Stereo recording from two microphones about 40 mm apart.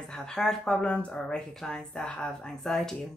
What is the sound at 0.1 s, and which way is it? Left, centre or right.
Speech, centre.